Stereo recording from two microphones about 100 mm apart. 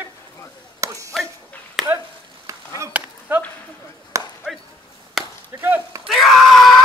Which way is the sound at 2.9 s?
15° right (ahead or behind).